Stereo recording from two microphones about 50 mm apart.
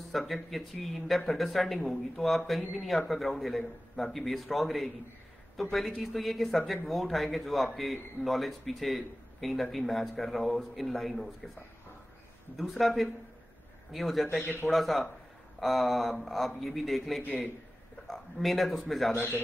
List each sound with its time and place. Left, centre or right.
0.1 s speech: centre
12.5 s speech: centre
19.1 s a man's voice: left